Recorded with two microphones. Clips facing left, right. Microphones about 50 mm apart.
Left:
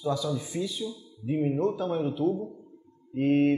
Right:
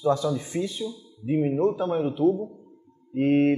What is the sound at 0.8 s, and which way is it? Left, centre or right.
A man's voice, right.